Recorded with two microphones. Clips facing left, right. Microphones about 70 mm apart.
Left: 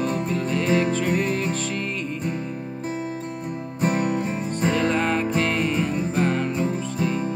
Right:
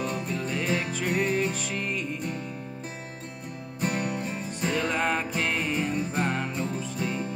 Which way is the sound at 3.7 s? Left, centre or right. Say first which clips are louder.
Left 6 dB; left.